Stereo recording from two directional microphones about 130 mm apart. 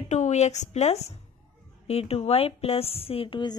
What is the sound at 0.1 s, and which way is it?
A woman's voice, 60° left (ahead or behind).